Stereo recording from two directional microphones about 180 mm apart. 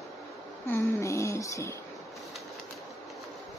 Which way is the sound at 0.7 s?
15° left (ahead or behind).